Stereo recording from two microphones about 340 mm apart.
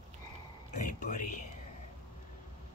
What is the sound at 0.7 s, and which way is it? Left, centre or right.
Speech, left.